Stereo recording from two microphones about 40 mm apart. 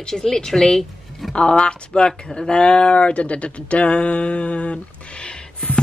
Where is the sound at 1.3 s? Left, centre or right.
Left.